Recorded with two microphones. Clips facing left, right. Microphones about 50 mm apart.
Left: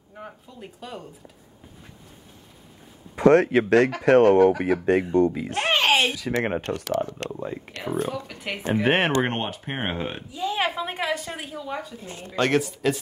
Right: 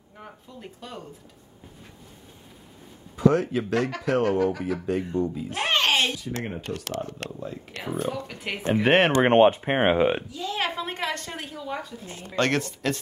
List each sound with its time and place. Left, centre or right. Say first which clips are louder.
0.2 s speech: left 2 dB; centre
3.2 s speech: left 5 dB; left
4.0 s speech: left 8 dB; left
5.7 s a sound: left 2 dB; centre
6.4 s speech: left 7 dB; left
7.2 s speech: left 4 dB; left
7.8 s speech: left 2 dB; centre
9.1 s speech: right 7 dB; right
10.3 s a woman's voice: left 3 dB; centre